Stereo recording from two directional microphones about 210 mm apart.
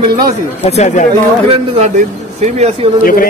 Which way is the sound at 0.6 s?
30° left (ahead or behind).